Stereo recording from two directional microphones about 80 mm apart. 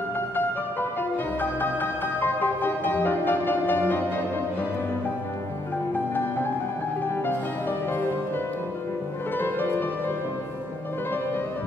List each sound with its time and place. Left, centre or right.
1.4 s music: left
9.4 s music: left